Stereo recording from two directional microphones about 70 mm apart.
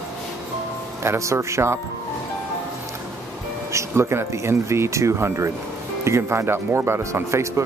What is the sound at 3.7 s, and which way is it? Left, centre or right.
Speech, right.